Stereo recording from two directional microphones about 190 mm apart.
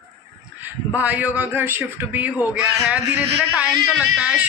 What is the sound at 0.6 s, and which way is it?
Speech, 10° right (ahead or behind).